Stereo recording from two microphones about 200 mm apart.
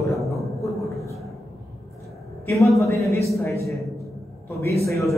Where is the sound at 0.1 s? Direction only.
Centre (ahead or behind).